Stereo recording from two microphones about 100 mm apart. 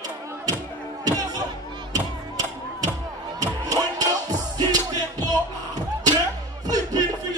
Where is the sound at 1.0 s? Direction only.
40° right (ahead or behind).